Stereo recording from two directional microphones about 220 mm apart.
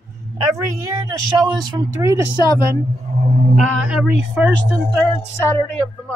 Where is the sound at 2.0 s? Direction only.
15° right (ahead or behind).